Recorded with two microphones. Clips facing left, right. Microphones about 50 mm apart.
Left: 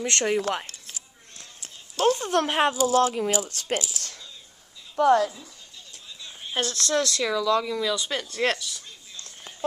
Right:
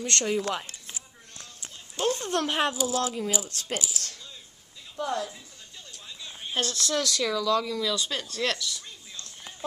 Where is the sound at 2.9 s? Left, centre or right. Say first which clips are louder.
Left 6 dB; left.